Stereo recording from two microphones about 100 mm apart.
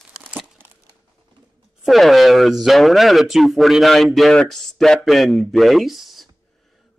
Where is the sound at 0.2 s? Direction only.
10° right (ahead or behind).